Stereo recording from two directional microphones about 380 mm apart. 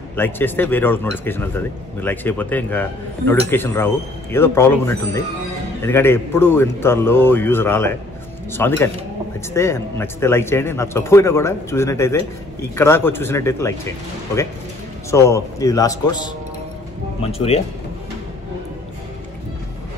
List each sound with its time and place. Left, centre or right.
0.1 s speech: centre